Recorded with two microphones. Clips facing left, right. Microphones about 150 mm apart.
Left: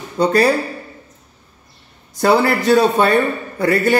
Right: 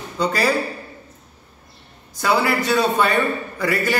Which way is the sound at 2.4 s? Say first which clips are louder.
Left 5 dB; 45° left (ahead or behind).